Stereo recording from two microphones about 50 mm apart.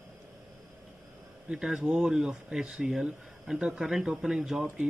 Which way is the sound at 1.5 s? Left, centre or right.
Centre.